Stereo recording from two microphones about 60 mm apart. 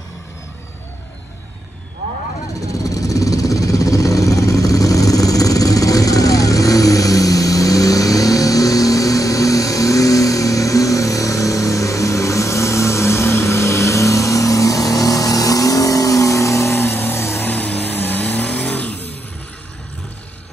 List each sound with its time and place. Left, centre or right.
2.7 s vehicle: left
16.8 s vehicle: left
17.5 s vehicle: left